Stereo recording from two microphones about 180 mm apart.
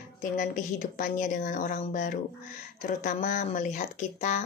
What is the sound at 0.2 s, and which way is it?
A woman's voice, 45° left (ahead or behind).